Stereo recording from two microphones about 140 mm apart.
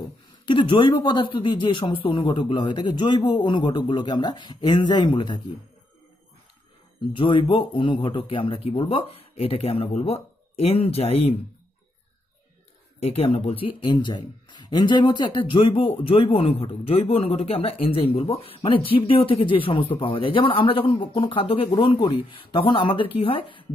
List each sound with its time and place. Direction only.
0.5 s speech: 35° left (ahead or behind)
7.2 s a man's voice: 35° left (ahead or behind)
13.0 s speech: 45° left (ahead or behind)